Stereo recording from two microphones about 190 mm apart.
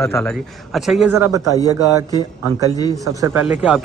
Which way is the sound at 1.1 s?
15° right (ahead or behind).